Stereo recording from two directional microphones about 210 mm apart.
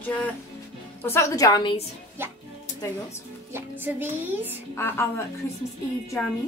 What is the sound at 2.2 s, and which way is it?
Speech, 10° right (ahead or behind).